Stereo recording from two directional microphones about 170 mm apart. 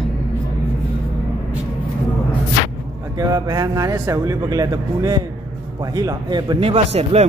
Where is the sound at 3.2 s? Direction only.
20° right (ahead or behind).